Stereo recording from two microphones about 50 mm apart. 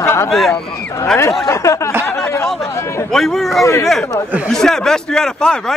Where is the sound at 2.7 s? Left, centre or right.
Left.